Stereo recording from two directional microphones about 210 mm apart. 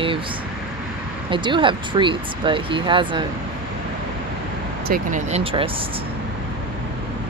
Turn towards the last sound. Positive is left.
turn(degrees=-40)  # may be behind; listen again after turning